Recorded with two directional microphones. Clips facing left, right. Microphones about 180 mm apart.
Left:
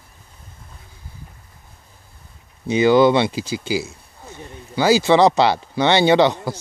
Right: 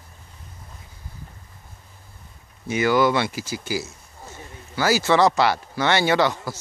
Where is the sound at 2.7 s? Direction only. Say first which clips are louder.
Left 6 dB; 20° left (ahead or behind).